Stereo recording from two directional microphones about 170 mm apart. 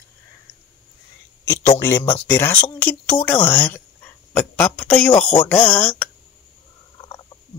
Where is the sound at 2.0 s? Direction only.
35° left (ahead or behind).